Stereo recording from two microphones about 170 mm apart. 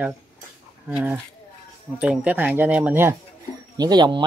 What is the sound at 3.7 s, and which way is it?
Speech, 25° right (ahead or behind).